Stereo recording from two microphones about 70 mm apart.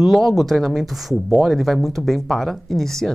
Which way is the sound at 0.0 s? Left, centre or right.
Centre.